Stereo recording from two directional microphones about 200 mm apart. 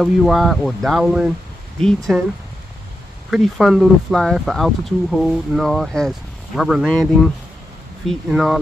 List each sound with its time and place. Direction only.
0.0 s speech: centre (ahead or behind)
3.3 s speech: centre (ahead or behind)
8.1 s speech: centre (ahead or behind)